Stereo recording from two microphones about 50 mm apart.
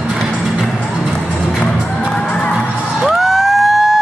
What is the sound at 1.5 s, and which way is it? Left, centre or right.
Music, left.